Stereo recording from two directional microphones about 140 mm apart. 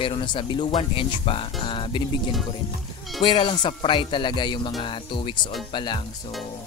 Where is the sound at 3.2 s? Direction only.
35° left (ahead or behind).